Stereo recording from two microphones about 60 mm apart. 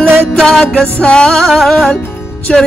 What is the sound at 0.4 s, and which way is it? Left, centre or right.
Music, centre.